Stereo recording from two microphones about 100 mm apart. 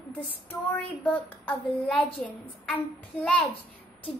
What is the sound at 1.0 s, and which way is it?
A child's voice, 15° left (ahead or behind).